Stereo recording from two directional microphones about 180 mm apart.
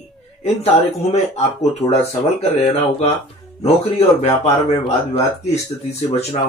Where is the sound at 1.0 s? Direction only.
35° left (ahead or behind).